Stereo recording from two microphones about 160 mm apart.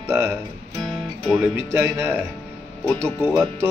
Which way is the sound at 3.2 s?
15° right (ahead or behind).